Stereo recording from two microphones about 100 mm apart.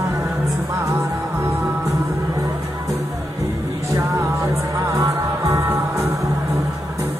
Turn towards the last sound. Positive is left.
turn(degrees=-30)  # may be behind; listen again after turning